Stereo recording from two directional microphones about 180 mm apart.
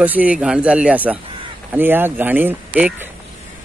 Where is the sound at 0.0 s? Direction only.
10° right (ahead or behind).